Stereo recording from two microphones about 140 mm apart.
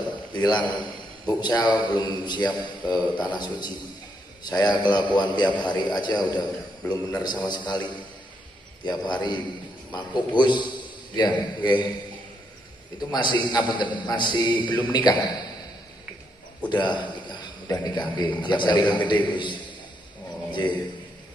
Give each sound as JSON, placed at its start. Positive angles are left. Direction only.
{"t": 0.3, "sound": "a man's voice", "side_deg": 30}
{"t": 13.1, "sound": "a man's voice", "side_deg": 30}
{"t": 16.6, "sound": "a man's voice", "side_deg": 30}